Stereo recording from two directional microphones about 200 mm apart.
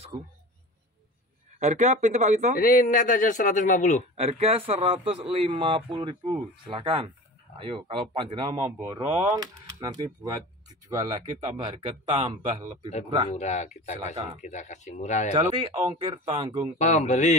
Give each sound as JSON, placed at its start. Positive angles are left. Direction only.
{"t": 1.6, "sound": "speech", "side_deg": -35}
{"t": 2.6, "sound": "a man's voice", "side_deg": 45}
{"t": 4.2, "sound": "a man's voice", "side_deg": -30}
{"t": 13.3, "sound": "a man's voice", "side_deg": 35}
{"t": 15.5, "sound": "a man's voice", "side_deg": -25}
{"t": 16.7, "sound": "a man's voice", "side_deg": 35}